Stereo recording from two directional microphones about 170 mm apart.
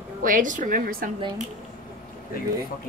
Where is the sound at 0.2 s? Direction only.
50° right (ahead or behind).